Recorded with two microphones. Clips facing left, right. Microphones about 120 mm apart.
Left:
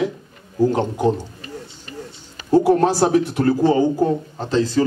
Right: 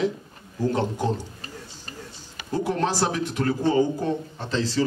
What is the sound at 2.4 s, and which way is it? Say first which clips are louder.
A man's voice: left 10 dB; 35° left (ahead or behind).